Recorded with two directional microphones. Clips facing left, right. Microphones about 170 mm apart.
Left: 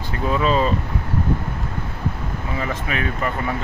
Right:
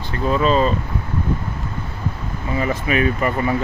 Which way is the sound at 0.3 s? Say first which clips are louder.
Right 2 dB; 5° left (ahead or behind).